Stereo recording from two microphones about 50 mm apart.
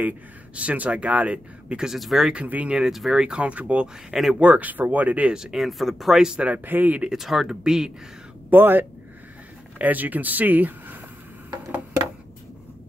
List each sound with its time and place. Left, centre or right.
0.6 s speech: right
2.0 s speech: centre
2.3 s speech: right
2.9 s speech: centre; by 3.9 s right
4.1 s speech: centre
4.4 s speech: right
5.3 s speech: centre
6.6 s speech: right
7.1 s speech: centre
8.5 s speech: right